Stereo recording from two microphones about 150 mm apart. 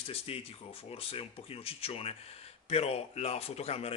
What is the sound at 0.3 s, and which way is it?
A man's voice, 40° left (ahead or behind).